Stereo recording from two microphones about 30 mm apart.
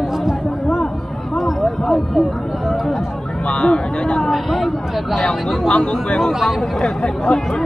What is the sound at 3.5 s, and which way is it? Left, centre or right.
Speech, left.